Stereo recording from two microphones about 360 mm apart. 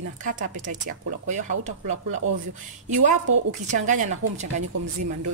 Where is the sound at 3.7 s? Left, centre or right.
Centre.